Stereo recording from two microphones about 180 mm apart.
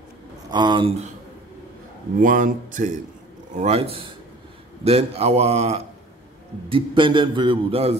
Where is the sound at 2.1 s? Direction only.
50° right (ahead or behind).